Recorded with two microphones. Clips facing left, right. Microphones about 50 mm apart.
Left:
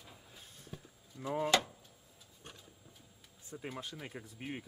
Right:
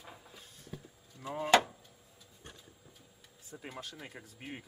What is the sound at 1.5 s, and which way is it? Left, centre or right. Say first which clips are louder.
Drawer open or close: right 8 dB; right.